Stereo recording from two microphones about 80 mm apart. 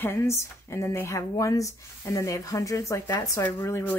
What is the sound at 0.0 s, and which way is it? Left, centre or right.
Speech, left.